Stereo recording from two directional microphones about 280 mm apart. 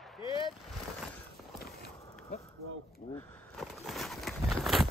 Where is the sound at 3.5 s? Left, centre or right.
Centre.